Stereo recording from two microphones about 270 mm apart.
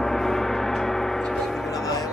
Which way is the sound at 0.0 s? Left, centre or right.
Centre.